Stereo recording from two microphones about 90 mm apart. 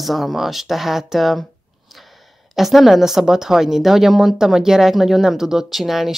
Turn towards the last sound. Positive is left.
turn(degrees=0)  # may be behind; listen again after turning